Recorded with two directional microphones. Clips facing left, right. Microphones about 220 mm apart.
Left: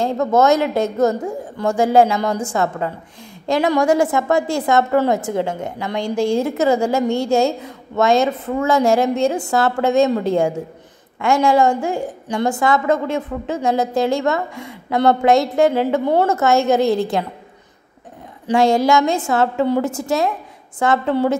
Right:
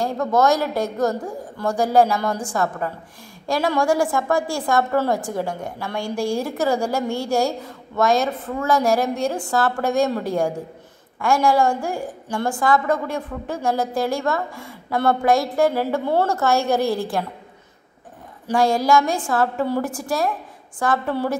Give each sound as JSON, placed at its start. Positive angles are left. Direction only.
{"t": 0.0, "sound": "a woman's voice", "side_deg": 25}
{"t": 18.5, "sound": "a woman's voice", "side_deg": 25}